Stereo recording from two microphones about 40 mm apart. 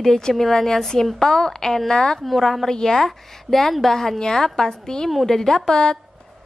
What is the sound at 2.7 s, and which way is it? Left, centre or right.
A woman's voice, centre.